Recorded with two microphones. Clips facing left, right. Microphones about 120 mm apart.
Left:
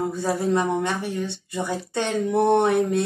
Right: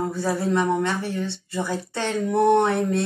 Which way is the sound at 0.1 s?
20° left (ahead or behind).